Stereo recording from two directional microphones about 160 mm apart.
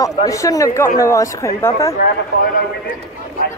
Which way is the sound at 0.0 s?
20° left (ahead or behind).